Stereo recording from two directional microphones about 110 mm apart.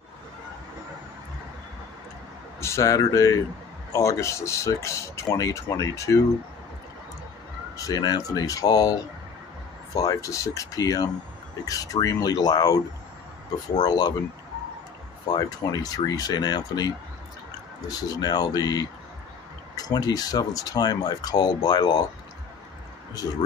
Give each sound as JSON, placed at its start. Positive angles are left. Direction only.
{"t": 2.6, "sound": "speech", "side_deg": 25}
{"t": 7.7, "sound": "speech", "side_deg": 35}
{"t": 13.8, "sound": "speech", "side_deg": 40}
{"t": 15.2, "sound": "speech", "side_deg": 40}